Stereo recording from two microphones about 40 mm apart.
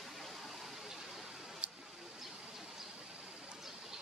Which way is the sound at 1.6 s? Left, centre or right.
Right.